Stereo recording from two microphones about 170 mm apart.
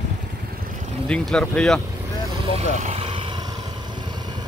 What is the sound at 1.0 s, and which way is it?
Speech, 5° left (ahead or behind).